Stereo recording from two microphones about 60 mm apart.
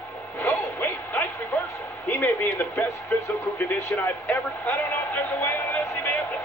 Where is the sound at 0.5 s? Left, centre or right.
Left.